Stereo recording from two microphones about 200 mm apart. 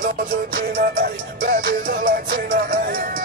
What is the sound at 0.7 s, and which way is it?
Music, 45° right (ahead or behind).